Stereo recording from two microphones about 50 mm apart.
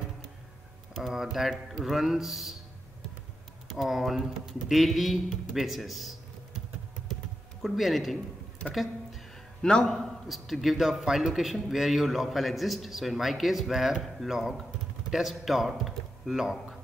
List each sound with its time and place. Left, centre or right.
1.0 s a man's voice: centre
3.6 s speech: centre
7.6 s a man's voice: centre
9.6 s a man's voice: centre
9.9 s a man's voice: centre